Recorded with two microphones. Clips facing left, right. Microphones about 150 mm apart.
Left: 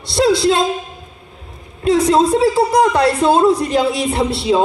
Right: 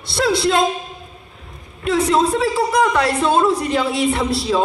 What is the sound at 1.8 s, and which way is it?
A man's voice, 30° left (ahead or behind).